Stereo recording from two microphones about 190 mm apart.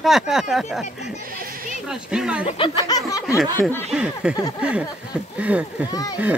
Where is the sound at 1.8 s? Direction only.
5° right (ahead or behind).